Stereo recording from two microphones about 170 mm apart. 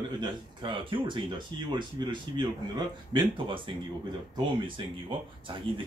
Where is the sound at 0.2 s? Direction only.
30° right (ahead or behind).